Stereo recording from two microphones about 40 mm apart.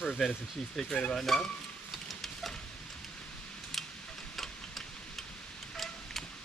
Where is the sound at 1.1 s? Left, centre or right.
Centre.